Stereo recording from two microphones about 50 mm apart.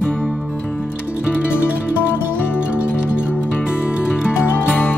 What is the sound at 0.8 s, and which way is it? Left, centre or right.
Music, right.